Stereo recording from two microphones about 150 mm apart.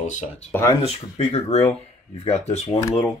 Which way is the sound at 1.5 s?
45° left (ahead or behind).